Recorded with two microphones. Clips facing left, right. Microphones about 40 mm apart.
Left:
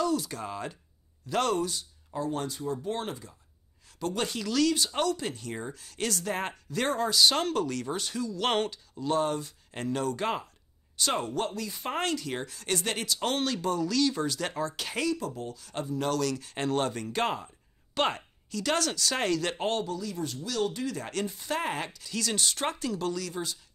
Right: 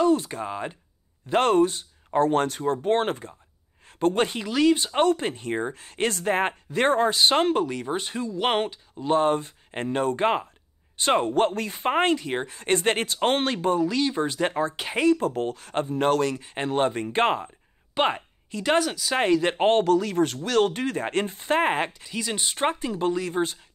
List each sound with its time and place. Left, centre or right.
0.0 s speech: right
1.2 s speech: right
2.0 s speech: right
15.1 s speech: right
17.9 s a woman's voice: right
18.9 s speech: centre
19.1 s speech: right
19.5 s speech: right
19.8 s speech: right